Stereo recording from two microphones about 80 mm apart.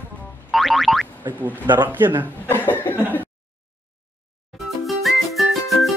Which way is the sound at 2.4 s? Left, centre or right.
Left.